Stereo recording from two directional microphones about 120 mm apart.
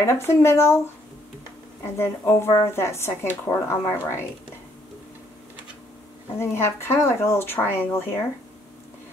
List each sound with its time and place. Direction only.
0.0 s speech: 20° left (ahead or behind)
1.8 s speech: 25° left (ahead or behind)
6.3 s speech: 20° left (ahead or behind)